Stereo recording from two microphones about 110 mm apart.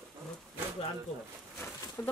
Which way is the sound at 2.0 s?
35° left (ahead or behind).